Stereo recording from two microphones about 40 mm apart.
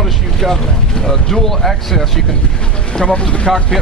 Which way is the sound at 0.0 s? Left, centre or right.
Centre.